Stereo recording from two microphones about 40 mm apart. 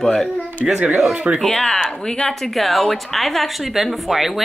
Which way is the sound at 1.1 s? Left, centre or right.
Right.